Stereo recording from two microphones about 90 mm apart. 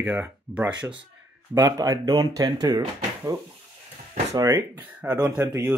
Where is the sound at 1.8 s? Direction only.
40° right (ahead or behind).